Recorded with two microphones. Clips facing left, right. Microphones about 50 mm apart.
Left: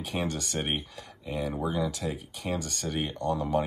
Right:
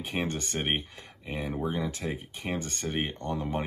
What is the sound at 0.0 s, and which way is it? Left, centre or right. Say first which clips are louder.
Speech: even; right.